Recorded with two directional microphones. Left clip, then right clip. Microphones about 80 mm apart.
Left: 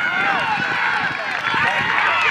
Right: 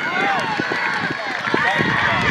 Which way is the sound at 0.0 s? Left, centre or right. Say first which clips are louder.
Left 1 dB; centre.